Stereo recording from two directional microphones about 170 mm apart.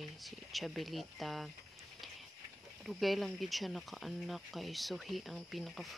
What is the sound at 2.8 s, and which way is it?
Speech, centre (ahead or behind).